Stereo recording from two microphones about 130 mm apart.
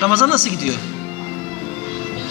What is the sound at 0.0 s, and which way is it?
Speech, 15° right (ahead or behind).